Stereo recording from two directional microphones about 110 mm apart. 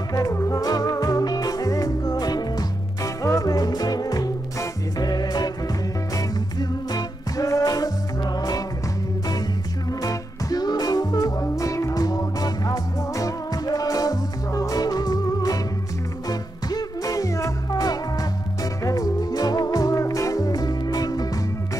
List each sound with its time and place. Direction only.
0.1 s music: 30° left (ahead or behind)
9.8 s music: 35° left (ahead or behind)